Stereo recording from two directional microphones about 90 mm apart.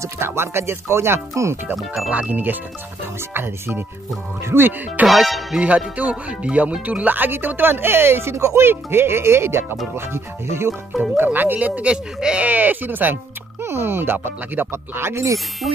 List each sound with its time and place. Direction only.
0.0 s speech: 30° right (ahead or behind)
2.0 s speech: 20° right (ahead or behind)
5.0 s music: centre (ahead or behind)
5.6 s speech: 15° right (ahead or behind)
10.9 s music: centre (ahead or behind)
11.2 s speech: 20° right (ahead or behind)